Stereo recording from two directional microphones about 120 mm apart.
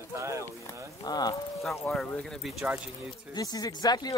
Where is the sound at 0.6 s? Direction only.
35° left (ahead or behind).